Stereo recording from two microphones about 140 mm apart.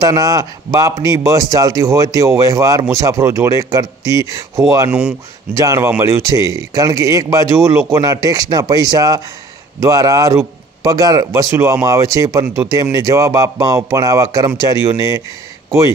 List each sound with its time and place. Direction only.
0.0 s speech: 25° right (ahead or behind)